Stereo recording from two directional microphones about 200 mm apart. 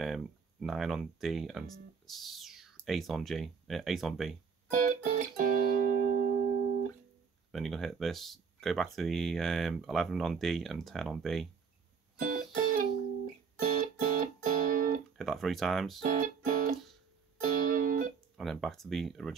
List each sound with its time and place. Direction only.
0.0 s speech: centre (ahead or behind)
4.6 s music: 40° right (ahead or behind)
7.5 s speech: centre (ahead or behind)
12.2 s music: 40° right (ahead or behind)
15.1 s speech: centre (ahead or behind)
16.0 s music: 40° right (ahead or behind)
18.3 s speech: centre (ahead or behind)